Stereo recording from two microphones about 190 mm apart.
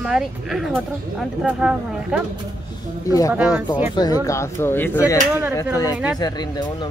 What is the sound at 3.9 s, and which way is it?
Speech, 20° left (ahead or behind).